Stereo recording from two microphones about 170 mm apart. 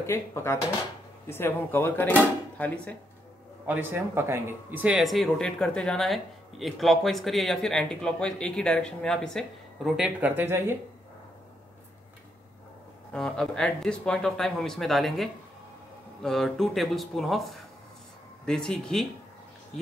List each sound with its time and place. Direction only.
0.0 s speech: 15° left (ahead or behind)
3.6 s speech: 10° right (ahead or behind)
13.1 s speech: 5° left (ahead or behind)